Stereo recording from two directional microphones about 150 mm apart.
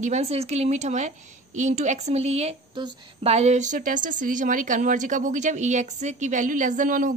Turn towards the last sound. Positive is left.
turn(degrees=-60)  # may be behind; listen again after turning